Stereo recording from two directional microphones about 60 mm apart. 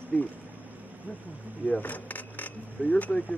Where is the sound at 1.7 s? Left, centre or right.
Left.